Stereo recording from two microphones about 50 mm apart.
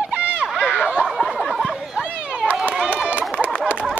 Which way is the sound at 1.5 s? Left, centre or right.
Centre.